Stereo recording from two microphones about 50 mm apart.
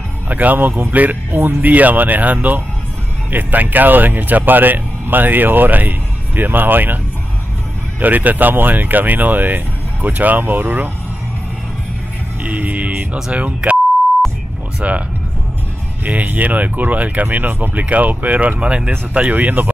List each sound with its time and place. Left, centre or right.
0.3 s speech: right
8.0 s speech: right
12.4 s speech: right
14.8 s speech: right
18.9 s speech: right